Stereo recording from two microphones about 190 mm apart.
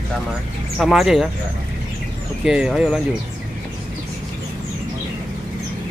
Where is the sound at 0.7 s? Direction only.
Centre (ahead or behind).